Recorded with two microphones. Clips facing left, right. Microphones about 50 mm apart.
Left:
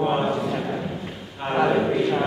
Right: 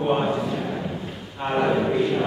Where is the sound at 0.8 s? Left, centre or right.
Centre.